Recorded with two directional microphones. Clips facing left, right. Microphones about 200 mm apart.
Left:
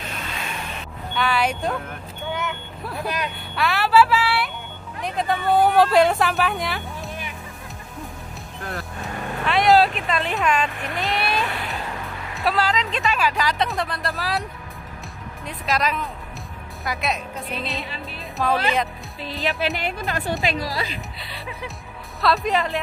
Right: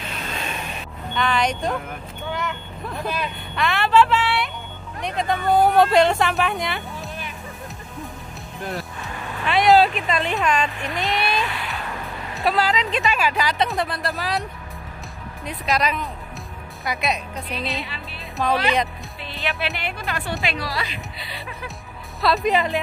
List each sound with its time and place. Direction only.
1.1 s speech: 5° left (ahead or behind)
9.5 s speech: centre (ahead or behind)
11.0 s a sound: 40° left (ahead or behind)
12.4 s speech: centre (ahead or behind)
15.4 s speech: centre (ahead or behind)
19.8 s speech: 40° left (ahead or behind)
21.2 s speech: centre (ahead or behind)